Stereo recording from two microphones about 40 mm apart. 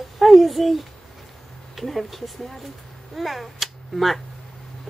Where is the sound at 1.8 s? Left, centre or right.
Centre.